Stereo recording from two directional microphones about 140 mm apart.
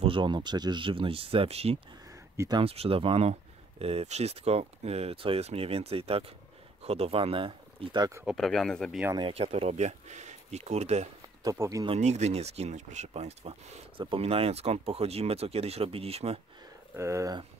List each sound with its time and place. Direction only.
0.0 s speech: 35° right (ahead or behind)
2.0 s a sound: 25° right (ahead or behind)
2.6 s speech: 45° right (ahead or behind)
8.3 s speech: 5° left (ahead or behind)
9.1 s speech: 40° right (ahead or behind)
11.4 s speech: 20° right (ahead or behind)
12.0 s speech: 50° right (ahead or behind)
16.9 s speech: 20° right (ahead or behind)